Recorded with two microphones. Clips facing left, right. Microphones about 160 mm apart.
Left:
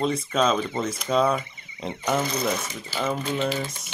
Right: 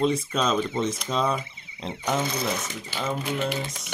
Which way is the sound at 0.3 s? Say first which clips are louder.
Left 2 dB; centre (ahead or behind).